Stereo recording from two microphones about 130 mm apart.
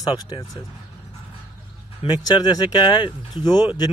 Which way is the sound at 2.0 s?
30° left (ahead or behind).